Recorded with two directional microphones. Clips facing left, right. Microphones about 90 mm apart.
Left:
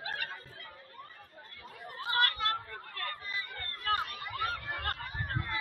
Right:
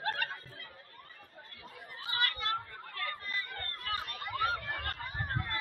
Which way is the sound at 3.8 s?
45° left (ahead or behind).